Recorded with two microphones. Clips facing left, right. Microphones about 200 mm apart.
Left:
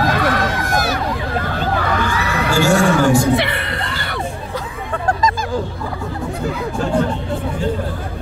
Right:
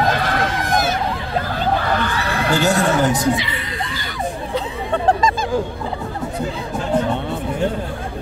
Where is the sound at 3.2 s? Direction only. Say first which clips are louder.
Left 3 dB; 60° left (ahead or behind).